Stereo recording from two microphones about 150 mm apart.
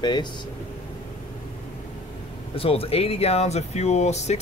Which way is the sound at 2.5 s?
40° left (ahead or behind).